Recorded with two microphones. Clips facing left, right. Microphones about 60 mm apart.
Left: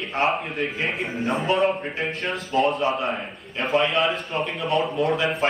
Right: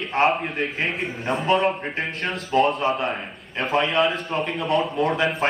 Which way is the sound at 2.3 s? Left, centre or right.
Right.